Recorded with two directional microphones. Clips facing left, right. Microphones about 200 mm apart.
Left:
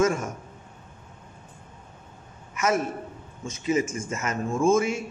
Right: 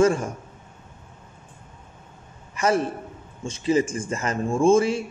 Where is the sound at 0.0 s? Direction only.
30° right (ahead or behind).